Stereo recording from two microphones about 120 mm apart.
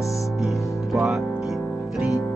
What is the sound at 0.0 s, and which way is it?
Music, 25° left (ahead or behind).